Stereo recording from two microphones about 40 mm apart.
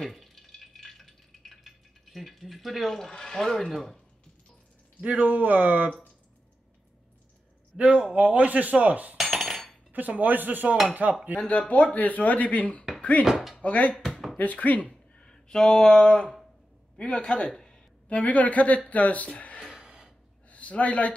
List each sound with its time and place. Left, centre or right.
0.0 s a sound: centre
2.1 s speech: centre
5.0 s speech: right
7.7 s speech: centre
8.1 s speech: right
9.1 s cutlery: centre
9.9 s speech: right
11.3 s speech: left
13.9 s a sound: centre
14.3 s speech: left
15.1 s a man's voice: centre
18.0 s speech: left
19.8 s a sound: centre
20.4 s a sound: left